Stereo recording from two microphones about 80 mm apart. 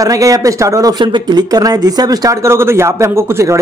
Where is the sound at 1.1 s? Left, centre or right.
Right.